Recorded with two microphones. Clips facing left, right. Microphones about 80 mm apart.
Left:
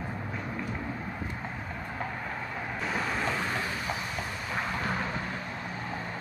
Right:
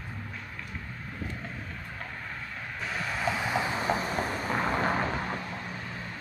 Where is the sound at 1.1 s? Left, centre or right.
Centre.